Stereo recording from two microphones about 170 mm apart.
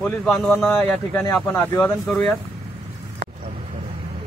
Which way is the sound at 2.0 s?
Centre (ahead or behind).